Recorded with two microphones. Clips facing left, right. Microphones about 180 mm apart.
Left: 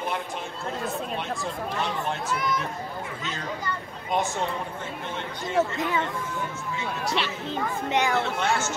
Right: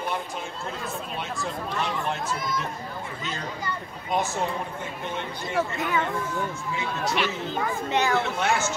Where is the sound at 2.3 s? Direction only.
65° left (ahead or behind).